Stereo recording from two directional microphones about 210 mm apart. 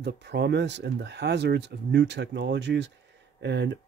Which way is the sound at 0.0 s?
55° right (ahead or behind).